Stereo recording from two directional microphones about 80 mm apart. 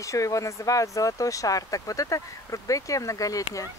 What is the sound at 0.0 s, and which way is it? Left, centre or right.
Speech, left.